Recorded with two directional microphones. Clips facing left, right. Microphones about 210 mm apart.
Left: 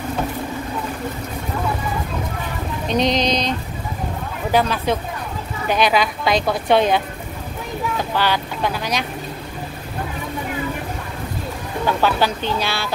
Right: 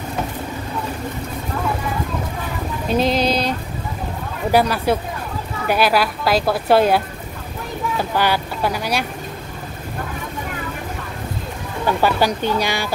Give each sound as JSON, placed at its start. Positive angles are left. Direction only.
{"t": 2.9, "sound": "a woman's voice", "side_deg": -5}
{"t": 8.0, "sound": "speech", "side_deg": -10}
{"t": 11.8, "sound": "speech", "side_deg": -10}